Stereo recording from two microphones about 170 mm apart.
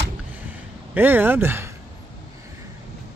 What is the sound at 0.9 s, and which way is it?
Speech, 10° right (ahead or behind).